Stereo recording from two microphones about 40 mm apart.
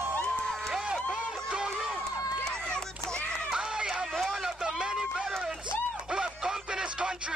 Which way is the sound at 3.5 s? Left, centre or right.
Centre.